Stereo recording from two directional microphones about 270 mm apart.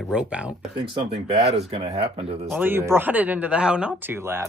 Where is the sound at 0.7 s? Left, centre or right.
Centre.